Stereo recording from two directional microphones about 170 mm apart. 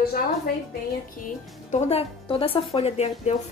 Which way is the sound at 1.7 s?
40° left (ahead or behind).